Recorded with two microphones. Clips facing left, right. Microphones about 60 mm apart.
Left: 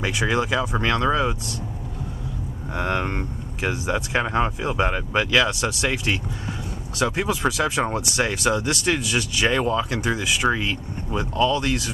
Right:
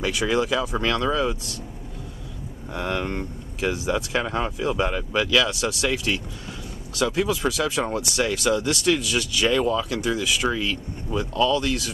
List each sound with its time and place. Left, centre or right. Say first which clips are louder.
0.0 s speech: even; left
2.7 s speech: left 2 dB; left